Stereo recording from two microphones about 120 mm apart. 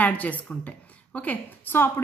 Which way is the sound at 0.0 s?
15° left (ahead or behind).